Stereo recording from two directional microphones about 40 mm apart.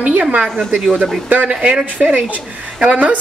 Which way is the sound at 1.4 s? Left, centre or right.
Right.